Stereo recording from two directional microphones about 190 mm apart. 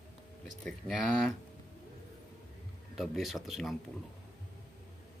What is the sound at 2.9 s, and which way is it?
Speech, centre (ahead or behind).